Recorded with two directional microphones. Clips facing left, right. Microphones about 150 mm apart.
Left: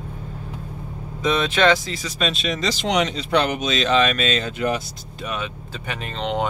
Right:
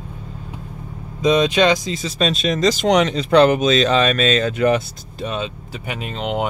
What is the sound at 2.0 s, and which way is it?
Speech, 35° right (ahead or behind).